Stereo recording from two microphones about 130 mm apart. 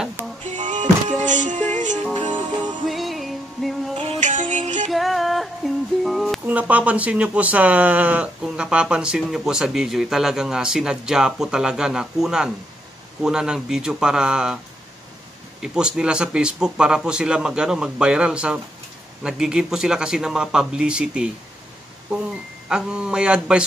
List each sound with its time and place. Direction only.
0.5 s music: 70° right (ahead or behind)
2.9 s music: centre (ahead or behind)
4.2 s music: 70° right (ahead or behind)
4.9 s music: centre (ahead or behind)
6.4 s speech: 10° right (ahead or behind)
15.6 s speech: 5° right (ahead or behind)
22.7 s speech: 5° right (ahead or behind)